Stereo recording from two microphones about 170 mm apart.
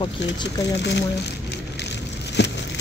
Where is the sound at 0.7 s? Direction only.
90° left.